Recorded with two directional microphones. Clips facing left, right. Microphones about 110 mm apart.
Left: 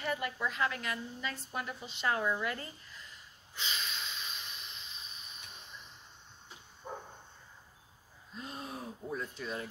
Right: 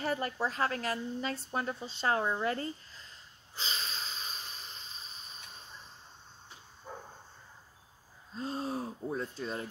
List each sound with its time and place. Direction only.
0.0 s a sound: 35° right (ahead or behind)
6.8 s dog: 25° left (ahead or behind)
8.4 s speech: 30° right (ahead or behind)